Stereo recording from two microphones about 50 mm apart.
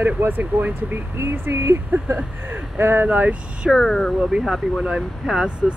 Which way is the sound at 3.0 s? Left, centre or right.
Right.